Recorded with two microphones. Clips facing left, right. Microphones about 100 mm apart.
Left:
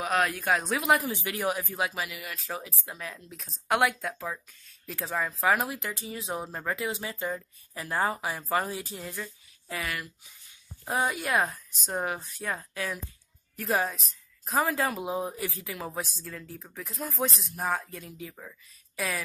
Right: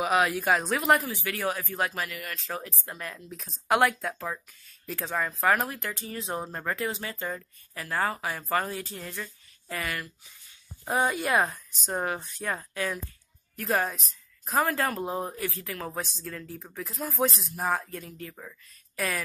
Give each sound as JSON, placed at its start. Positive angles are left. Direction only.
{"t": 0.0, "sound": "speech", "side_deg": -5}
{"t": 1.0, "sound": "speech", "side_deg": 15}
{"t": 7.7, "sound": "speech", "side_deg": 20}
{"t": 15.3, "sound": "speech", "side_deg": 15}
{"t": 15.6, "sound": "speech", "side_deg": 5}